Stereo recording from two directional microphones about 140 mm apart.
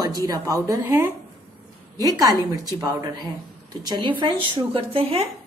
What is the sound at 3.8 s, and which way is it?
Speech, 30° right (ahead or behind).